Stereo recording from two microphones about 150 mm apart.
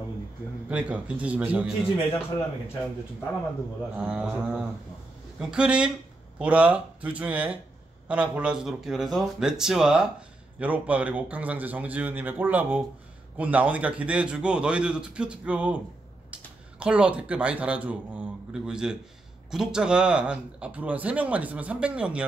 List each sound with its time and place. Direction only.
0.7 s speech: 10° right (ahead or behind)
3.9 s speech: 5° right (ahead or behind)
16.8 s speech: 5° right (ahead or behind)